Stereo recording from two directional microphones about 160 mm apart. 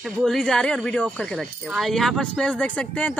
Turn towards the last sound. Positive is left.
turn(degrees=10)  # may be behind; listen again after turning